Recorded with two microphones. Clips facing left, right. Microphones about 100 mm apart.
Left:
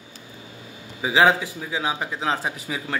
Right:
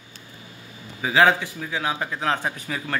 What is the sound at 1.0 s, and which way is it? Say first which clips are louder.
A man's voice: even; 15° left (ahead or behind).